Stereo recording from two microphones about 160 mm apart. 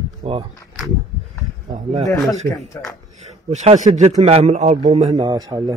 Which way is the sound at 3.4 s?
40° right (ahead or behind).